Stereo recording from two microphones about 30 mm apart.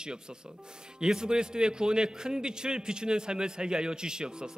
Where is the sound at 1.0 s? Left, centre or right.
Right.